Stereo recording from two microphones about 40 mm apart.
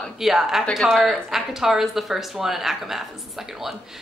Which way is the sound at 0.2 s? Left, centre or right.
Centre.